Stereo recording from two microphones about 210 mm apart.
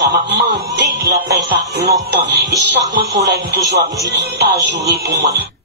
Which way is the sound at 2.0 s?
50° right (ahead or behind).